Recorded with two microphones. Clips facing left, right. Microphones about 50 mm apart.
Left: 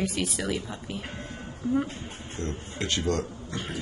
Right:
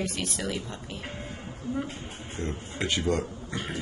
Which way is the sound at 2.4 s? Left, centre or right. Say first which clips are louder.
Right 1 dB; centre.